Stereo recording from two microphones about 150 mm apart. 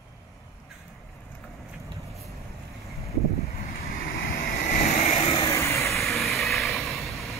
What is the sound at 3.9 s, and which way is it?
Vehicle, 80° left.